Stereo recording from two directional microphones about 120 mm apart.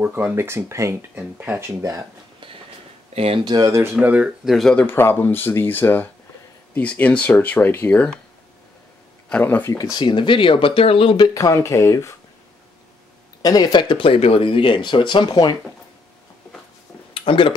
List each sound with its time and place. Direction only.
0.0 s speech: 15° right (ahead or behind)
3.4 s speech: 30° right (ahead or behind)
3.9 s speech: 10° right (ahead or behind)
4.5 s speech: centre (ahead or behind)
4.8 s speech: 20° left (ahead or behind)
9.3 s speech: 15° left (ahead or behind)
9.9 s speech: 40° left (ahead or behind)
11.3 s speech: 25° left (ahead or behind)
13.4 s speech: 35° left (ahead or behind)
17.1 s a sound: 50° left (ahead or behind)